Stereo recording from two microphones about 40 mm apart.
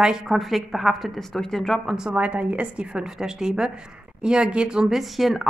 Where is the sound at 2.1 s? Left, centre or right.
Right.